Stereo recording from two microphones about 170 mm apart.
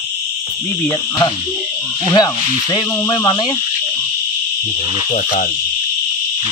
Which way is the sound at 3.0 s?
20° left (ahead or behind).